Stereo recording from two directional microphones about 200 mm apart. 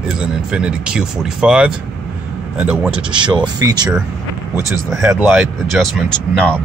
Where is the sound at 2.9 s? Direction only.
25° right (ahead or behind).